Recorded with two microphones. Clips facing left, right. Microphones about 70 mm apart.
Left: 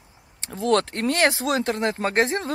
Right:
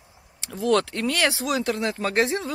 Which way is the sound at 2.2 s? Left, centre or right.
Left.